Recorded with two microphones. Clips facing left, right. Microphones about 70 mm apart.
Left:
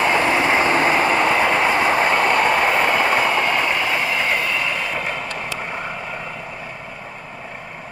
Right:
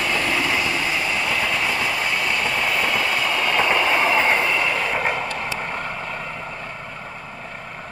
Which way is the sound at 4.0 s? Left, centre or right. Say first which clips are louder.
Right 3 dB; right.